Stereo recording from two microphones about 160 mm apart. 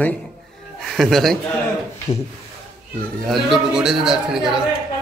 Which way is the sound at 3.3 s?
5° right (ahead or behind).